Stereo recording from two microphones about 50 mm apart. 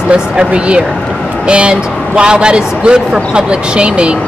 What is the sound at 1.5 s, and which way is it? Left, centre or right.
Speech, right.